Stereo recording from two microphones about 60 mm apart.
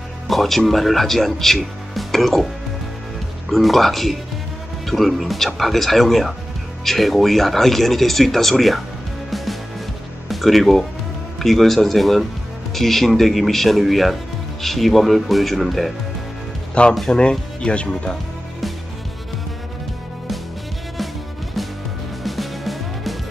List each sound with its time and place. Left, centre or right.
0.3 s speech: centre
3.5 s speech: centre
9.3 s music: centre
10.2 s speech: centre
16.8 s speech: centre
22.2 s music: centre